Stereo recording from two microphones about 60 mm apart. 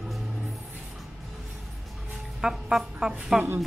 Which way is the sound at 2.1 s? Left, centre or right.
Centre.